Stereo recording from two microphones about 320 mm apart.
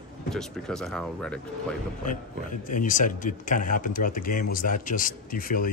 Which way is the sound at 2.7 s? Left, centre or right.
Left.